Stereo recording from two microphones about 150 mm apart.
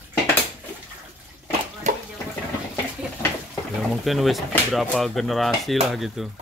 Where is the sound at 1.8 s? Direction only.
55° right (ahead or behind).